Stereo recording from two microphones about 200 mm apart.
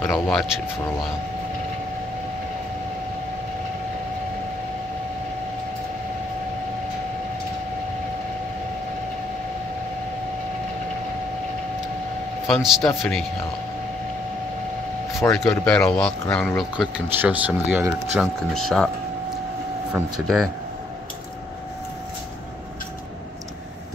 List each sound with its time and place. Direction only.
0.1 s speech: centre (ahead or behind)
12.4 s speech: centre (ahead or behind)
15.1 s speech: 15° left (ahead or behind)
16.7 s speech: 5° right (ahead or behind)
19.9 s speech: centre (ahead or behind)